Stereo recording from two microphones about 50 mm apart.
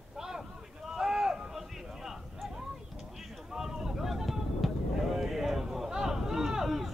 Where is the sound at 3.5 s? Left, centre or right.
Centre.